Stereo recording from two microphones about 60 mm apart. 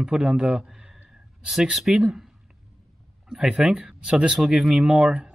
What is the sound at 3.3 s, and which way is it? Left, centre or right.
Speech, centre.